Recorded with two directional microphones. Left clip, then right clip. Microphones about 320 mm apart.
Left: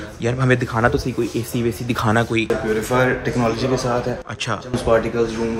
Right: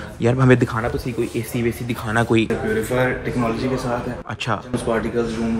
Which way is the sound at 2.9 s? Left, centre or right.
Left.